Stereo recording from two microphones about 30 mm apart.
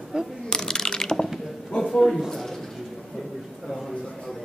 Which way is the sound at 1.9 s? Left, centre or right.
Centre.